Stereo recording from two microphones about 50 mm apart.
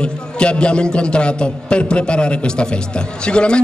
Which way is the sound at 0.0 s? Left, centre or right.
Left.